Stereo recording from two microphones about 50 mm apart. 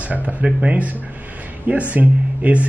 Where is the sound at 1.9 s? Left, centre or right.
Right.